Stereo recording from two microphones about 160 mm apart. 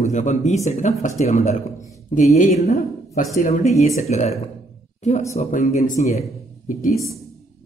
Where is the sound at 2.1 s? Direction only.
50° left (ahead or behind).